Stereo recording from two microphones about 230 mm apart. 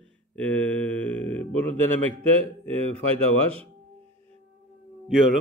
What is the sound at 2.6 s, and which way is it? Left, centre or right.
Speech, right.